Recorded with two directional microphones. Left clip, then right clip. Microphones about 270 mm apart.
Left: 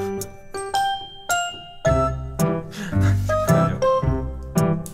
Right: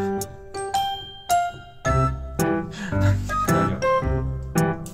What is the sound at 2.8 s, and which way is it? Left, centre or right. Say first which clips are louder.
Music: right 1 dB; left.